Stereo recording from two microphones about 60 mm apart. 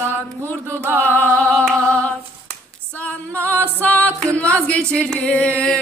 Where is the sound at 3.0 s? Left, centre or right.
Left.